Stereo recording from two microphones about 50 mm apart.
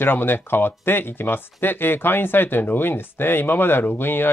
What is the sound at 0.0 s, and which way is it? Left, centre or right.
Speech, left.